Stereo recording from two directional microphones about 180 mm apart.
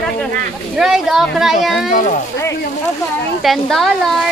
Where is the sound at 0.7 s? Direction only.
Centre (ahead or behind).